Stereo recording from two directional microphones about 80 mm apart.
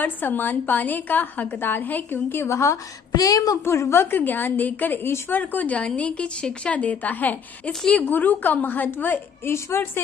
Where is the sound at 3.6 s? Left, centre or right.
Left.